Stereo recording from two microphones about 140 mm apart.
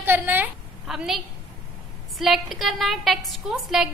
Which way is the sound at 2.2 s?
Centre (ahead or behind).